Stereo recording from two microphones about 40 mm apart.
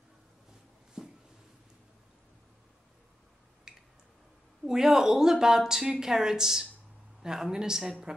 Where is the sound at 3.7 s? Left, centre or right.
Centre.